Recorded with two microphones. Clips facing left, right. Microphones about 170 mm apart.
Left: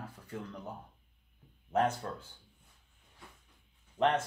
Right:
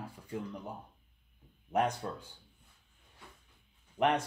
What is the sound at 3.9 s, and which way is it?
Speech, 15° right (ahead or behind).